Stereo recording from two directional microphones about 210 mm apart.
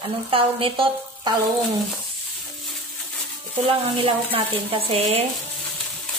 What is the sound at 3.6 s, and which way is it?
Speech, 25° right (ahead or behind).